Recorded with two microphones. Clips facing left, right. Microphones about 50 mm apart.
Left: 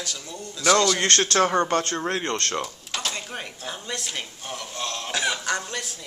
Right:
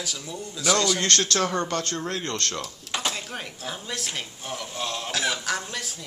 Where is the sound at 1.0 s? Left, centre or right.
Left.